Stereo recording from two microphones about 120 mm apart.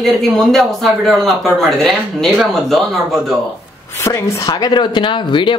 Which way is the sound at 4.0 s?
30° left (ahead or behind).